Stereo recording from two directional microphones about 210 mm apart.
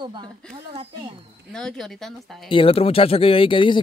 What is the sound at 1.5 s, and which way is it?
Speech, 5° left (ahead or behind).